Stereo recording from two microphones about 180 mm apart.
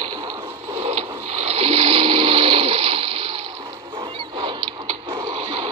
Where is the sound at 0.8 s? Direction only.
35° right (ahead or behind).